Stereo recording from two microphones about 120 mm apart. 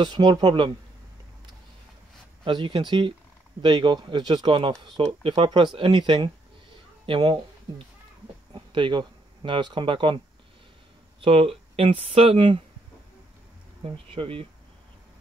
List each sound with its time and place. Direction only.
0.0 s speech: 40° right (ahead or behind)
2.4 s speech: 40° right (ahead or behind)
8.5 s speech: 40° right (ahead or behind)
13.8 s speech: 50° right (ahead or behind)